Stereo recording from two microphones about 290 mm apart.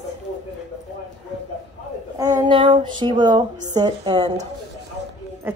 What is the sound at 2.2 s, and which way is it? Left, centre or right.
Speech, centre.